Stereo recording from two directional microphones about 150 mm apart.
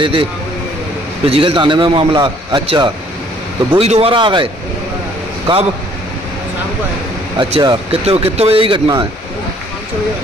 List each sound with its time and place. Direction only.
0.0 s a man's voice: 35° right (ahead or behind)
7.3 s a man's voice: 35° right (ahead or behind)